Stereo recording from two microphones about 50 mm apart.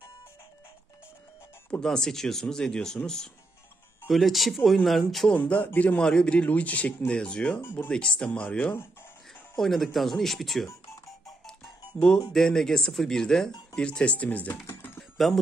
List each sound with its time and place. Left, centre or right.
1.8 s speech: centre
4.1 s speech: centre
5.3 s speech: left
5.9 s speech: centre
7.1 s speech: centre
7.6 s speech: left
7.9 s speech: centre
8.3 s speech: left
9.6 s speech: centre
12.1 s speech: centre
13.8 s speech: left
14.7 s music: left